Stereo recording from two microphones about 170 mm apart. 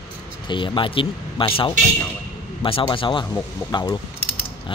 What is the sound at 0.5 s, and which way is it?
Speech, 30° left (ahead or behind).